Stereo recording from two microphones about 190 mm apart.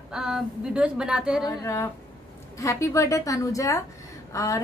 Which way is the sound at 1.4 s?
15° left (ahead or behind).